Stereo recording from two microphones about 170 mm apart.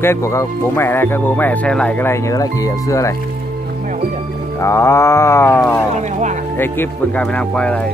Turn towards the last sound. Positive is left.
turn(degrees=5)  # may be behind; listen again after turning